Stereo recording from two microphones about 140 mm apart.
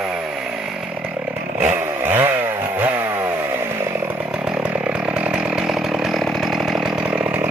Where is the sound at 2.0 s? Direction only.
15° right (ahead or behind).